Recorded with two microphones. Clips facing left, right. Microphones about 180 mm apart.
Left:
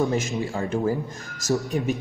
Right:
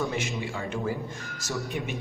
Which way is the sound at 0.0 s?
40° left (ahead or behind).